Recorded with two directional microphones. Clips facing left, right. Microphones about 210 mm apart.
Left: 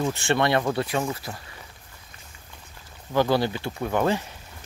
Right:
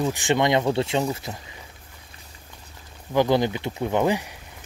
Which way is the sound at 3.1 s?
15° right (ahead or behind).